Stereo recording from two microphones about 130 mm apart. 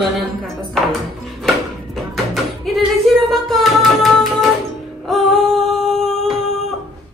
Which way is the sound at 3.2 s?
Centre (ahead or behind).